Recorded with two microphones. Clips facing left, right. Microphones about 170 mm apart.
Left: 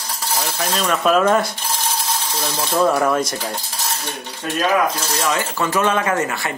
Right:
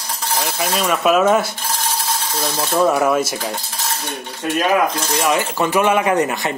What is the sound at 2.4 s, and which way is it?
Speech, 10° right (ahead or behind).